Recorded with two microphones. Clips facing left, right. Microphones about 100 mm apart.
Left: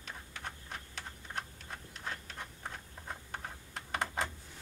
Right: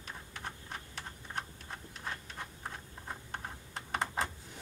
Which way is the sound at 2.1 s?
Centre (ahead or behind).